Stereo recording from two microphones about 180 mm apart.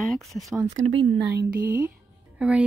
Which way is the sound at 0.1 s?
Centre (ahead or behind).